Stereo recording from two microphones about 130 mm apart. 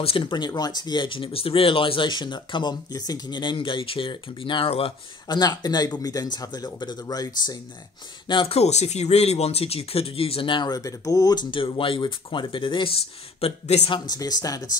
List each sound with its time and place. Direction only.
0.0 s speech: 40° left (ahead or behind)
5.4 s speech: 30° left (ahead or behind)
8.3 s speech: 45° left (ahead or behind)
13.4 s speech: 55° left (ahead or behind)
13.8 s speech: 35° left (ahead or behind)